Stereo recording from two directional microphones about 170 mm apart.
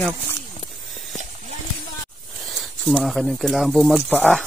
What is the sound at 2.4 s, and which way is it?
Speech, centre (ahead or behind).